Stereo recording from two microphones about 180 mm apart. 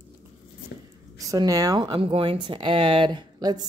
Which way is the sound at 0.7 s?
60° left (ahead or behind).